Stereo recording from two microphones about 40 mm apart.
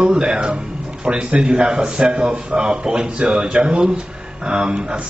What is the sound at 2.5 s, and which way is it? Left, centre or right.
A man's voice, right.